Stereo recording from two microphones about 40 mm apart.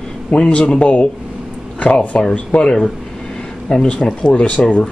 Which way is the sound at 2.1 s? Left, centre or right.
Left.